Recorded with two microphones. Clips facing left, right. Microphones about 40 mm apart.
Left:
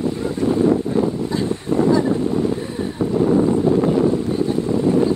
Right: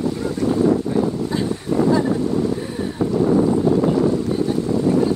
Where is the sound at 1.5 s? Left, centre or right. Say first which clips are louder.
Left 2 dB; left.